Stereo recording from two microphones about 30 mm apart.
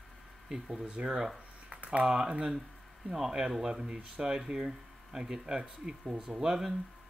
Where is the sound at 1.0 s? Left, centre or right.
Right.